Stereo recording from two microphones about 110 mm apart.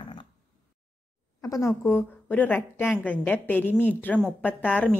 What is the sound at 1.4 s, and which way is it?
A woman's voice, 25° left (ahead or behind).